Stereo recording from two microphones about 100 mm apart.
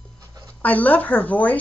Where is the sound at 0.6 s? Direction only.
15° left (ahead or behind).